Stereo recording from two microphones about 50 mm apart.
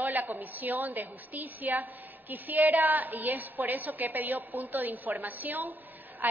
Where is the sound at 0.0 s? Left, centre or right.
Right.